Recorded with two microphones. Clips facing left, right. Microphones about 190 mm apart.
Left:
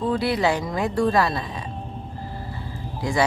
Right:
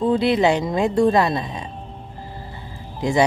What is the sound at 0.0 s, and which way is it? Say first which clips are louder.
Speech: right 5 dB; 25° right (ahead or behind).